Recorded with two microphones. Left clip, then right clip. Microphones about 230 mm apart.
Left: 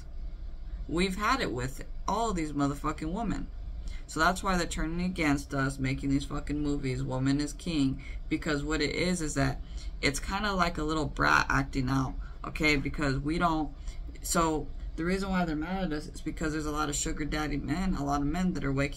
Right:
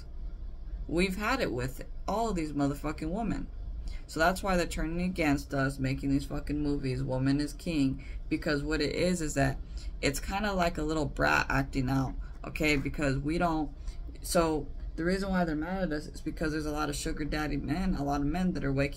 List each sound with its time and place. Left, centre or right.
0.9 s speech: centre